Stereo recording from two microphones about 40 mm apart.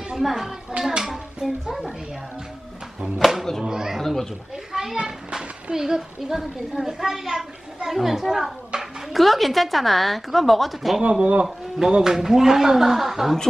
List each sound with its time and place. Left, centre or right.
0.2 s a child's voice: centre
3.2 s a child's voice: centre
3.9 s speech: centre
4.7 s a sound: centre
5.4 s a child's voice: centre
11.0 s speech: right
11.9 s a child's voice: centre